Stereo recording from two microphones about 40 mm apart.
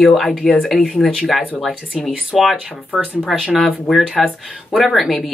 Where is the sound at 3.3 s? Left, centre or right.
Centre.